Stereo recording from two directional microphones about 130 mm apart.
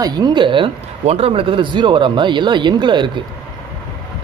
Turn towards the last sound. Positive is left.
turn(degrees=-35)  # may be behind; listen again after turning